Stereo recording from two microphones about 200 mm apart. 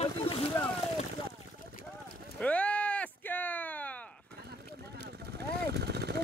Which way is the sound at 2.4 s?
5° left (ahead or behind).